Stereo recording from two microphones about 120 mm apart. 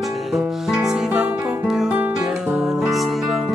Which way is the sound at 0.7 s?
10° right (ahead or behind).